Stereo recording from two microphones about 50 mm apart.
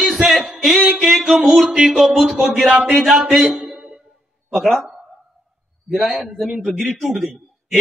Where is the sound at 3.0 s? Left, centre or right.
Centre.